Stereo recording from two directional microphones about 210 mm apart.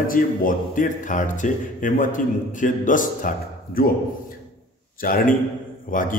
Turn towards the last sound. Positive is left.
turn(degrees=40)  # may be behind; listen again after turning